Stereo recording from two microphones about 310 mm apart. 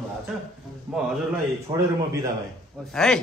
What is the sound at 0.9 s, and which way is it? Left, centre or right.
Speech, centre.